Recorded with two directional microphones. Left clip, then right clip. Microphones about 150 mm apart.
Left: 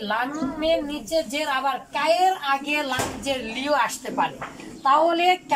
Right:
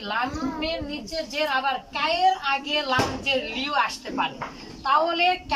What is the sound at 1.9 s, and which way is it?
Speech, 40° left (ahead or behind).